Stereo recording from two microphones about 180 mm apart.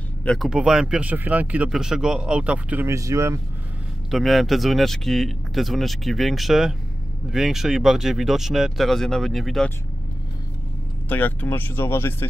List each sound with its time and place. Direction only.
0.2 s speech: 5° left (ahead or behind); by 3.3 s 15° right (ahead or behind)
4.1 s speech: centre (ahead or behind)
11.1 s speech: 10° left (ahead or behind)